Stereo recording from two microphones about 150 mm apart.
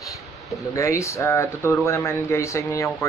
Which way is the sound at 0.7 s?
20° left (ahead or behind).